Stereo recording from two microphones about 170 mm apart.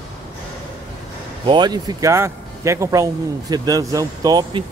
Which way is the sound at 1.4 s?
25° right (ahead or behind).